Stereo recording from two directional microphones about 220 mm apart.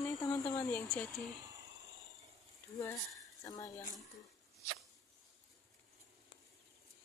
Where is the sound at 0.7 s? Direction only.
5° left (ahead or behind).